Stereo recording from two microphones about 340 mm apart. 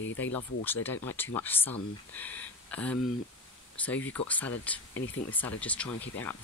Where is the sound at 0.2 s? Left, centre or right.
Centre.